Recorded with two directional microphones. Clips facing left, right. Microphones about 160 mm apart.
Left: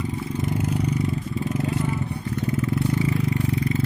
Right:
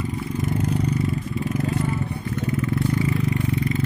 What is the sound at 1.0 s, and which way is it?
Vehicle, 25° left (ahead or behind).